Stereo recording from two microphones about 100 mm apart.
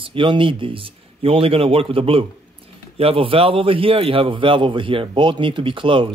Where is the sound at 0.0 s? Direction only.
60° right (ahead or behind).